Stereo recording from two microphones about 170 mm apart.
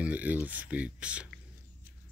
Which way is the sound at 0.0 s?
10° right (ahead or behind).